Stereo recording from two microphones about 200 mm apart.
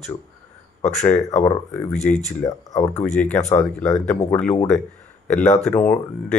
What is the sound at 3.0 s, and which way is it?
Speech, 5° left (ahead or behind).